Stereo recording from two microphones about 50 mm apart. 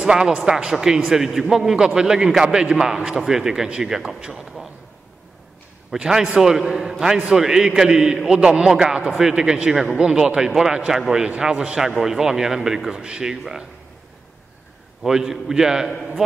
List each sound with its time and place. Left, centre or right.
0.0 s a man's voice: centre
5.9 s a man's voice: centre
15.0 s a man's voice: centre